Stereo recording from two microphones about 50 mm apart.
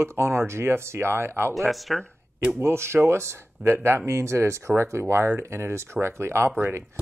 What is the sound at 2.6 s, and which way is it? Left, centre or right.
Speech, right.